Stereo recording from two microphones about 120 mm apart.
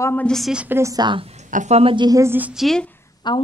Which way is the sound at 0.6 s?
20° right (ahead or behind).